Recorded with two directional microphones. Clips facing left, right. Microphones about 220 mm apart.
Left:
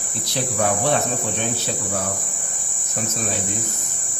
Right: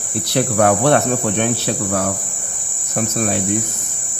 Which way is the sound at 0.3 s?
65° right (ahead or behind).